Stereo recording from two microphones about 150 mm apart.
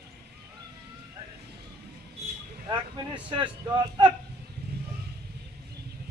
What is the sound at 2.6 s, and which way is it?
Vehicle, 25° right (ahead or behind).